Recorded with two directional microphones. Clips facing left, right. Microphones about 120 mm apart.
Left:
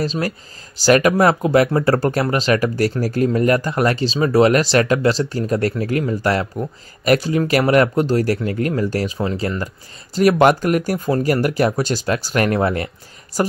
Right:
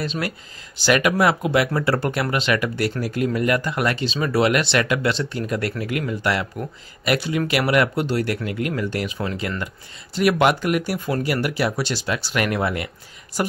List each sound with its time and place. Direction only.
0.0 s speech: 35° left (ahead or behind)